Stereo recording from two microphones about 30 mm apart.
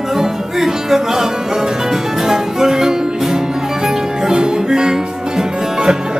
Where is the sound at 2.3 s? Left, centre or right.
Centre.